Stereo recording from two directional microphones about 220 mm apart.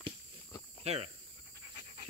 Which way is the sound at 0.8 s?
30° right (ahead or behind).